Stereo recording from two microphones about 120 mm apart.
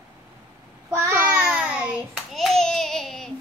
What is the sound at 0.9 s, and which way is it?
Child singing, 25° right (ahead or behind).